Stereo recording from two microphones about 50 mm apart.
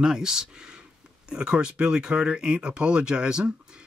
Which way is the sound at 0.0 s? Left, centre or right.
Centre.